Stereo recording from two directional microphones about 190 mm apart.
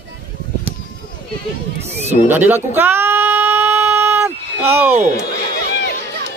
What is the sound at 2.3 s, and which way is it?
Sheep, 10° right (ahead or behind).